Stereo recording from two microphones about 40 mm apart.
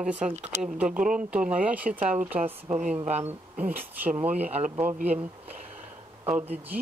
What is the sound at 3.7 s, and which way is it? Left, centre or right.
Speech, right.